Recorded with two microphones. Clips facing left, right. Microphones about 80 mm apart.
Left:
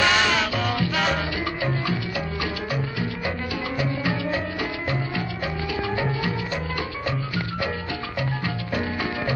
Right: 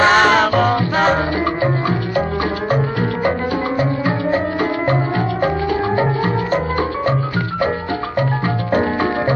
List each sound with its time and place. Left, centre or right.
0.0 s music: right